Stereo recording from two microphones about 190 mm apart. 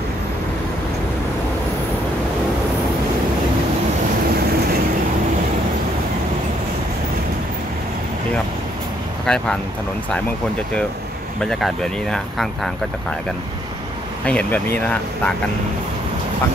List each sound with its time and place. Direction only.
9.2 s speech: 5° left (ahead or behind)
11.4 s speech: centre (ahead or behind)
14.2 s speech: 5° left (ahead or behind)